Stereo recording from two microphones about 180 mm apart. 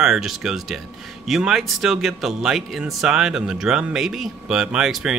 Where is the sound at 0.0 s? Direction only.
5° right (ahead or behind).